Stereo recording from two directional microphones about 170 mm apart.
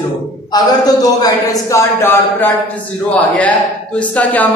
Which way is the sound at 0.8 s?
20° left (ahead or behind).